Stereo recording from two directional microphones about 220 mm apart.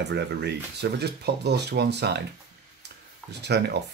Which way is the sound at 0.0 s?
50° right (ahead or behind).